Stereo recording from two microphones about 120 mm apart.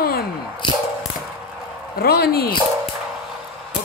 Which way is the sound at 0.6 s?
40° left (ahead or behind).